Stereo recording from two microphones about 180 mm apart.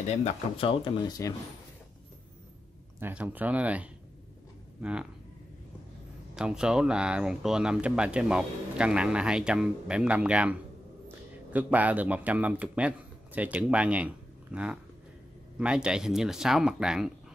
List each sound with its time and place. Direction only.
0.2 s speech: 35° left (ahead or behind)
3.0 s speech: 10° right (ahead or behind)
6.3 s a man's voice: 5° right (ahead or behind)